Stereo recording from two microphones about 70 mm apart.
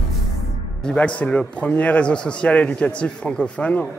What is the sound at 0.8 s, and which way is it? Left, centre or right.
A man's voice, centre.